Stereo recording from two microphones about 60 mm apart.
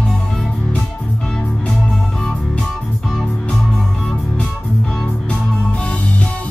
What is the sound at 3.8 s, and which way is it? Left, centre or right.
Music, centre.